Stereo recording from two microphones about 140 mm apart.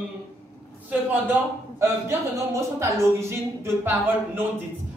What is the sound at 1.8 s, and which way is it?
A man's voice, 20° right (ahead or behind).